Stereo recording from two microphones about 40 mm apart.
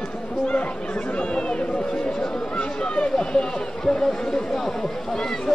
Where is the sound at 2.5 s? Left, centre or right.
Left.